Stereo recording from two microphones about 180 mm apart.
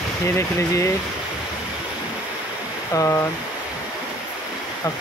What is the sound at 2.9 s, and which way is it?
Speech, 20° left (ahead or behind).